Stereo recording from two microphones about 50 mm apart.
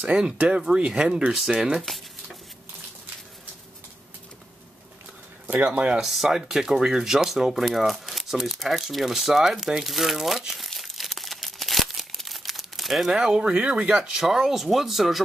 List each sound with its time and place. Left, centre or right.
0.0 s speech: right
5.9 s speech: centre
13.1 s speech: centre
14.1 s speech: centre